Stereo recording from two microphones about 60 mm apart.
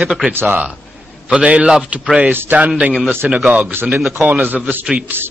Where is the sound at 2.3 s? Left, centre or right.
Right.